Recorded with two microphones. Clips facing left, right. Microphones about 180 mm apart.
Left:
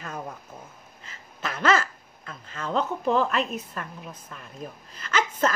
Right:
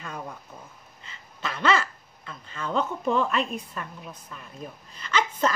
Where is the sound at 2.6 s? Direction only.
Centre (ahead or behind).